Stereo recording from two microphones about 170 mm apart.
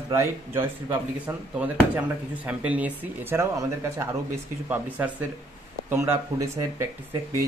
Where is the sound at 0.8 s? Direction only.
10° right (ahead or behind).